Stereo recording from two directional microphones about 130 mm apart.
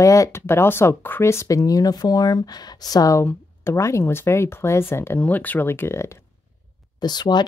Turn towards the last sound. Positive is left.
turn(degrees=35)  # may be behind; listen again after turning